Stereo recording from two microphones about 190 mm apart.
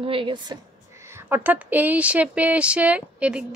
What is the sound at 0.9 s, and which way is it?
Speech, 15° right (ahead or behind).